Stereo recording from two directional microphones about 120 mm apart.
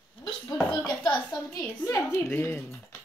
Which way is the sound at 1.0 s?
10° left (ahead or behind).